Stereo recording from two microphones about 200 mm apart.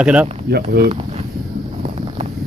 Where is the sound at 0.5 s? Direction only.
50° right (ahead or behind).